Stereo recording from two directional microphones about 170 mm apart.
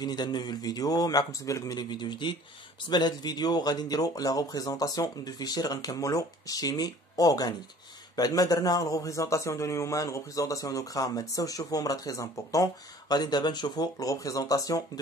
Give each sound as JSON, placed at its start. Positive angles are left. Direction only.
{"t": 0.0, "sound": "speech", "side_deg": 25}